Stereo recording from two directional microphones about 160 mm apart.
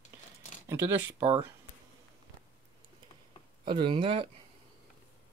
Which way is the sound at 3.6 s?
30° right (ahead or behind).